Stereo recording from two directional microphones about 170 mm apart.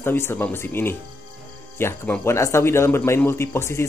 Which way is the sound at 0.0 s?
15° left (ahead or behind).